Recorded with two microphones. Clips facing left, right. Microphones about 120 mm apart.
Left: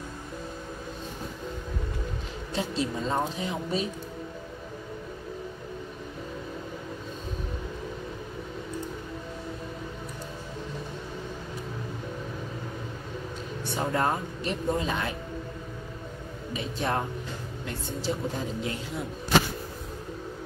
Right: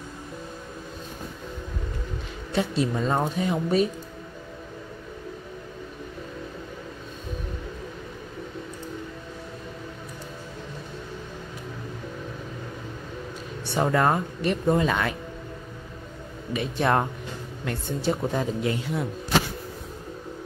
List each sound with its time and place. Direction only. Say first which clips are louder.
2.5 s speech: right 5 dB; 60° right (ahead or behind)
13.7 s speech: right 5 dB; 80° right
16.5 s speech: right 6 dB; 65° right (ahead or behind)